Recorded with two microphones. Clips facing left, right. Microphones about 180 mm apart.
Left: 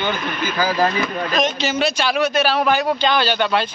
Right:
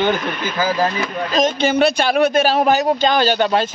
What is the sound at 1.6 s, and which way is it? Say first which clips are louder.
A man's voice: right 5 dB; 55° right (ahead or behind).